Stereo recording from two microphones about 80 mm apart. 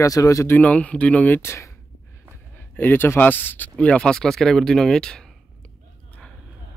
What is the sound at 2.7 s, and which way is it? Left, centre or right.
Speech, left.